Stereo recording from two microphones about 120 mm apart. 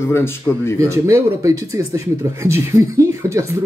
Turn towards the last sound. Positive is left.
turn(degrees=-25)  # may be behind; listen again after turning